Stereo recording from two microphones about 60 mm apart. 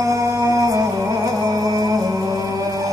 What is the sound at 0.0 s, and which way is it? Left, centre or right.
Music, right.